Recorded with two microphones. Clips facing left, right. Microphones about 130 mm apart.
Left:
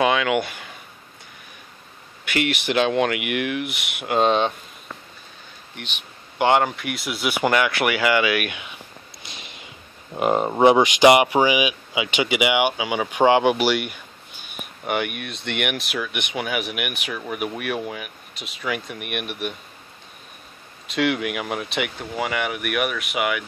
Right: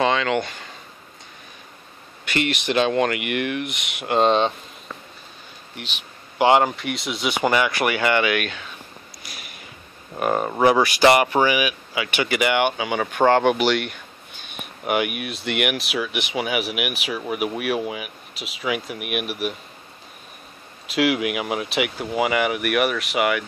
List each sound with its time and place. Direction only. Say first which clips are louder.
0.0 s speech: left 1 dB; 10° left (ahead or behind)
2.2 s speech: even; 5° left (ahead or behind)
5.8 s speech: right 1 dB; 5° right (ahead or behind)
7.8 s speech: even; 25° right (ahead or behind)
8.4 s speech: even; 15° left (ahead or behind)
9.2 s a sound: left 1 dB; 25° left (ahead or behind)
10.1 s speech: left 2 dB; 20° left (ahead or behind)
14.9 s speech: right 2 dB; 5° right (ahead or behind)
20.8 s speech: right 2 dB; 5° right (ahead or behind)